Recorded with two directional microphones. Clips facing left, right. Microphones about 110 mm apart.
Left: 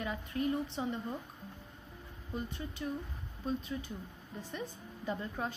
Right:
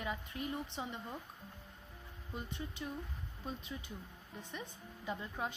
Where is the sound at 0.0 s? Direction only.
20° right (ahead or behind).